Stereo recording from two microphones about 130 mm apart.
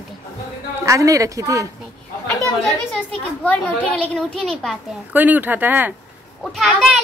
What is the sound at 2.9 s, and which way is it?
A child's voice, 10° left (ahead or behind).